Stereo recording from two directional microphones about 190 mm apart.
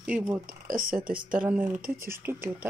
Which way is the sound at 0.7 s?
45° right (ahead or behind).